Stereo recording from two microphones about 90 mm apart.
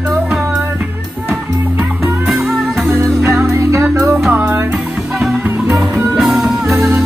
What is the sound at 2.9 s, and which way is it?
Music, 35° right (ahead or behind).